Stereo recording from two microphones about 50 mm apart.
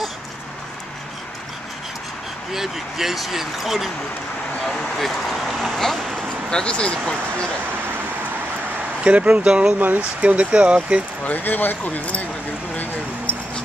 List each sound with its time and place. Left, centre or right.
2.5 s speech: centre
4.6 s vehicle: centre
9.0 s speech: right
9.8 s speech: right
11.2 s speech: left